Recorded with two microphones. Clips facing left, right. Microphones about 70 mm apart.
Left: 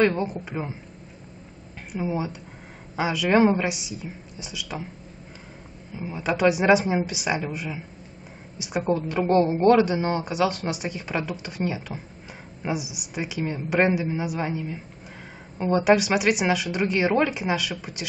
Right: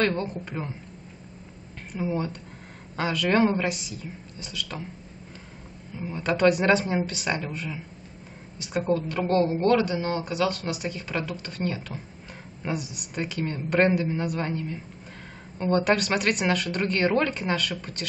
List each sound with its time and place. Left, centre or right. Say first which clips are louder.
0.0 s a woman's voice: left 4 dB; centre
1.9 s a woman's voice: left 1 dB; centre
5.9 s a woman's voice: even; centre